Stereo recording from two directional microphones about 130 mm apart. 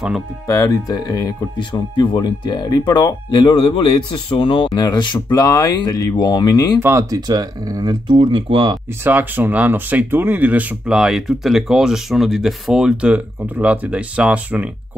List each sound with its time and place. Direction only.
0.5 s speech: 25° left (ahead or behind)
1.6 s speech: 40° left (ahead or behind)
6.8 s speech: 20° right (ahead or behind); by 8.7 s 40° right (ahead or behind)
9.0 s speech: 15° right (ahead or behind)